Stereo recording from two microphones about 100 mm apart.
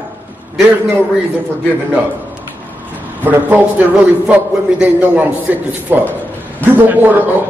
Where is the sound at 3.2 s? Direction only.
15° right (ahead or behind).